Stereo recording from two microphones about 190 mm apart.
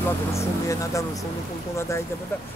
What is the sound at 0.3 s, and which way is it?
Speech, 15° left (ahead or behind).